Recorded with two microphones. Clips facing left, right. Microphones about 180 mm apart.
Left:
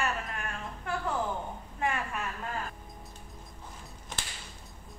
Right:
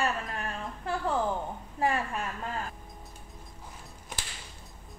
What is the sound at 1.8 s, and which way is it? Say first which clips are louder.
Speech: right 4 dB; 35° right (ahead or behind).